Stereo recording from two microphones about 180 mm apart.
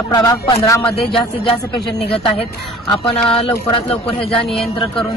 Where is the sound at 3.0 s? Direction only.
30° left (ahead or behind).